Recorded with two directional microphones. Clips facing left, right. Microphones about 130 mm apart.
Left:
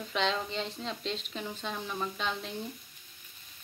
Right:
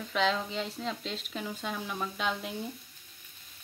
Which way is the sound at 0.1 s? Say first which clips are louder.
Right 2 dB; centre (ahead or behind).